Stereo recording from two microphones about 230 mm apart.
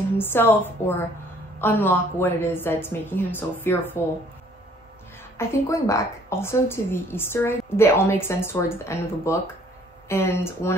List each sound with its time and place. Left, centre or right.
0.2 s a woman's voice: centre
5.4 s a woman's voice: centre